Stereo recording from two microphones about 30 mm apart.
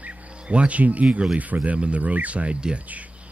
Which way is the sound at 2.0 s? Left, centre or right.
Right.